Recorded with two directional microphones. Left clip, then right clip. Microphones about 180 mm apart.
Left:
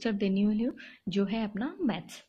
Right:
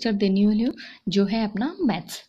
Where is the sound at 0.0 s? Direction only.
20° right (ahead or behind).